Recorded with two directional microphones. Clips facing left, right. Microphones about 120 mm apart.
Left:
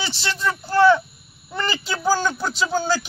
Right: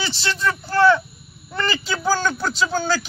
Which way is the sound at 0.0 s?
15° left (ahead or behind).